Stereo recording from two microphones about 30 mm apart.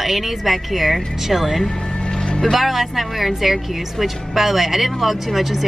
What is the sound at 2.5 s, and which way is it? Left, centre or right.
Speech, centre.